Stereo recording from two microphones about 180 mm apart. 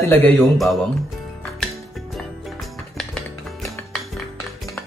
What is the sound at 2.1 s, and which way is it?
Music, centre (ahead or behind).